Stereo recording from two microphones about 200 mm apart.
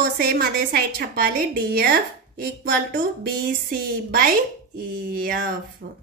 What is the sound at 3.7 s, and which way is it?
Speech, 45° right (ahead or behind).